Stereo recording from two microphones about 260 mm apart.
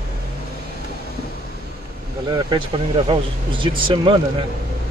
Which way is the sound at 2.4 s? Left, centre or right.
Centre.